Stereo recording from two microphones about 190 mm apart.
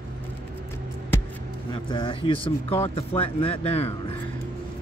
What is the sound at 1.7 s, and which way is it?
Speech, 25° left (ahead or behind).